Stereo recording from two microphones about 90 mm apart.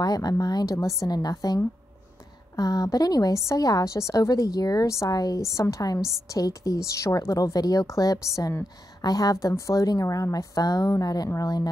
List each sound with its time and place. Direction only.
0.0 s a woman's voice: 45° left (ahead or behind)
5.9 s a woman's voice: 5° right (ahead or behind)
6.2 s a woman's voice: 40° left (ahead or behind)